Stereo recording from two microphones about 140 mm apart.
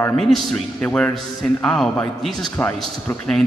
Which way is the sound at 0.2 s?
5° left (ahead or behind).